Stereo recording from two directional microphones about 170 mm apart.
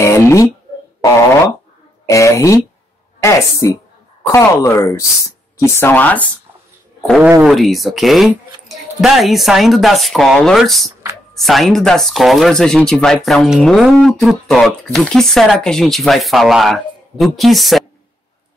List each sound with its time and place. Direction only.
0.0 s a sound: 15° left (ahead or behind)
2.0 s speech: 20° left (ahead or behind)
3.6 s speech: 15° left (ahead or behind)
7.2 s speech: 10° right (ahead or behind)